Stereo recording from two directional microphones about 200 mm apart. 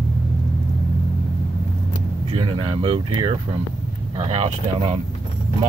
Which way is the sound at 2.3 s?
25° right (ahead or behind).